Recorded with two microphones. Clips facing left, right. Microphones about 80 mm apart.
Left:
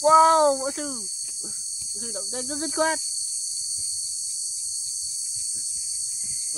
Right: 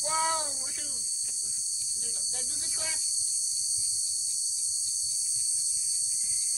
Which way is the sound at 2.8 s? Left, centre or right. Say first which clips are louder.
Left 19 dB; left.